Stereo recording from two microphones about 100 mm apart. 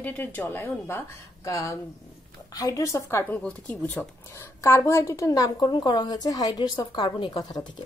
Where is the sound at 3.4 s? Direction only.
15° left (ahead or behind).